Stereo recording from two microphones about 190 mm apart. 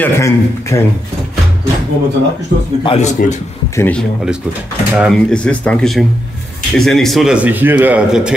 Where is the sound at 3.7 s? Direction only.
10° left (ahead or behind).